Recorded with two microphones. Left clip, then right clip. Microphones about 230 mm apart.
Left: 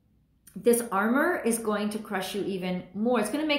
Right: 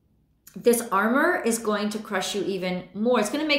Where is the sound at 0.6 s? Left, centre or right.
Centre.